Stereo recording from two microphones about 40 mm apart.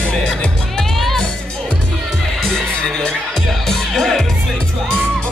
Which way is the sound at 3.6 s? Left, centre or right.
Centre.